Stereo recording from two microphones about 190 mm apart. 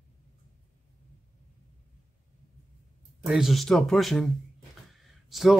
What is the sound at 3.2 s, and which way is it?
Speech, centre (ahead or behind).